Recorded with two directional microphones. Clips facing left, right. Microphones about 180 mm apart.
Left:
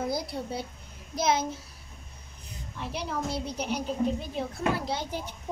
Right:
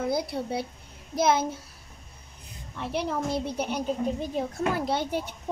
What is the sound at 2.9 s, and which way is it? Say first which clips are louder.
A woman's voice: right 4 dB; 55° right (ahead or behind).